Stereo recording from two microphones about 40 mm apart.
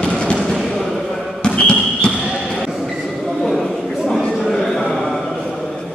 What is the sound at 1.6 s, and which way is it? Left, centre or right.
Basketball bounce, left.